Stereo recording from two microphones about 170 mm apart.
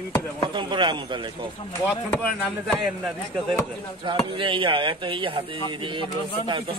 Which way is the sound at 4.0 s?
30° right (ahead or behind).